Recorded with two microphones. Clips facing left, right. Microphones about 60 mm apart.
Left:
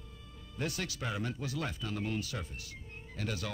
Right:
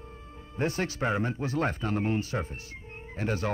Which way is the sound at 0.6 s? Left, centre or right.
Right.